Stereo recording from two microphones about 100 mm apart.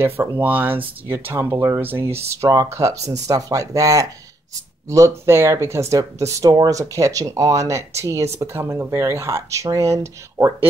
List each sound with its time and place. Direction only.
0.0 s speech: 20° right (ahead or behind)